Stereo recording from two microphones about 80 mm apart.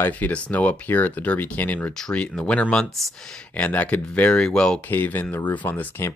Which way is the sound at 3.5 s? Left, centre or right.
Centre.